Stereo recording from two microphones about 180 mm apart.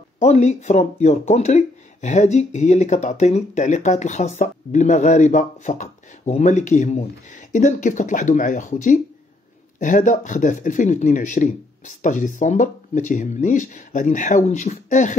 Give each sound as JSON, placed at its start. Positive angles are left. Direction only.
{"t": 0.2, "sound": "speech", "side_deg": 40}